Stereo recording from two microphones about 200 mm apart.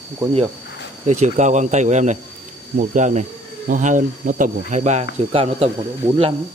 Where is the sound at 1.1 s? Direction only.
35° right (ahead or behind).